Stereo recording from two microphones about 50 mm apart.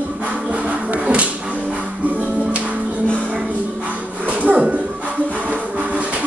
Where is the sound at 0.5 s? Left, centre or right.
Right.